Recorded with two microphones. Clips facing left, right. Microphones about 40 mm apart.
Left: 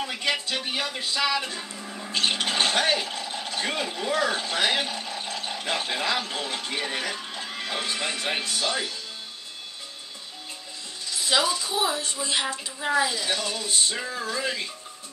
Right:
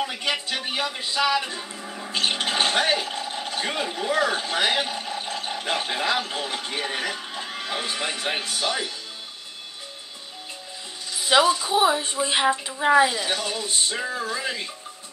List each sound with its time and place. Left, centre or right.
0.0 s music: centre
4.1 s speech: centre
11.1 s speech: right